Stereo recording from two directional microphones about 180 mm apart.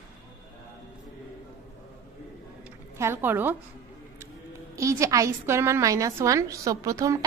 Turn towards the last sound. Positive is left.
turn(degrees=-20)  # may be behind; listen again after turning